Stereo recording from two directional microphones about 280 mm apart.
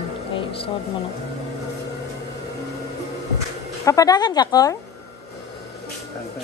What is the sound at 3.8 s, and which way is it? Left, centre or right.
Speech, centre.